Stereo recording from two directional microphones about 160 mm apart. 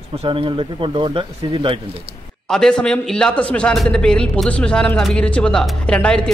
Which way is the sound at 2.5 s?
5° left (ahead or behind).